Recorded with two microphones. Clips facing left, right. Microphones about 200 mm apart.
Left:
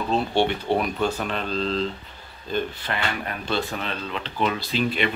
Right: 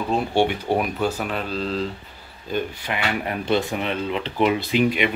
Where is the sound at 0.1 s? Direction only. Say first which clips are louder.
Right 1 dB; 10° right (ahead or behind).